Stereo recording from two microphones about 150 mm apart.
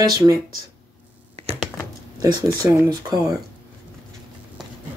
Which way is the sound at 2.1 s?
25° right (ahead or behind).